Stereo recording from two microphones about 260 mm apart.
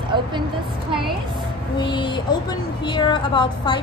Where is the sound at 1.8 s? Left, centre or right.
Centre.